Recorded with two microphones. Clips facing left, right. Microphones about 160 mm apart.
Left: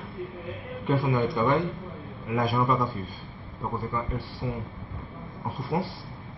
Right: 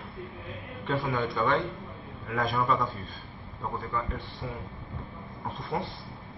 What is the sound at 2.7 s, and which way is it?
Speech, 5° left (ahead or behind).